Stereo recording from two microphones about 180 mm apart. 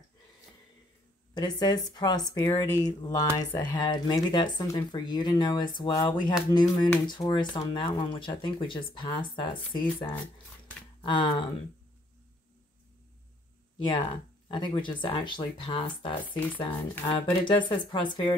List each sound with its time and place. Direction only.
1.3 s speech: 25° left (ahead or behind)
2.6 s speech: 15° left (ahead or behind)
13.8 s speech: 25° left (ahead or behind)